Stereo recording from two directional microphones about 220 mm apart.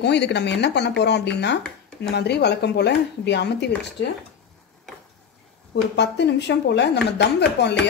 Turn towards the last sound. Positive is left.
turn(degrees=50)  # may be behind; listen again after turning